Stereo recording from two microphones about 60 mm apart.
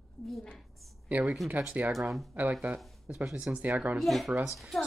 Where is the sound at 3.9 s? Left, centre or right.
Centre.